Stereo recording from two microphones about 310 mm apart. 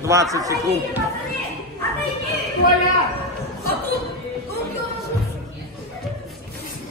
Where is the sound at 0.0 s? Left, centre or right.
Centre.